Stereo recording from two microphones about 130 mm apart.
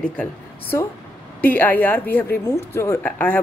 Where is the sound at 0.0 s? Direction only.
10° left (ahead or behind).